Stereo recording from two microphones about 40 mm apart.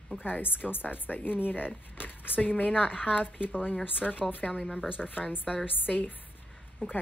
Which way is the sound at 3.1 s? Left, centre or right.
Left.